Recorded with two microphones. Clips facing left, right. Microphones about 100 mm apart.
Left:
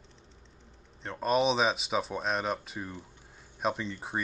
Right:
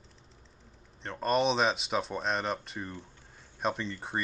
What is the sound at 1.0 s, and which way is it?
Speech, centre (ahead or behind).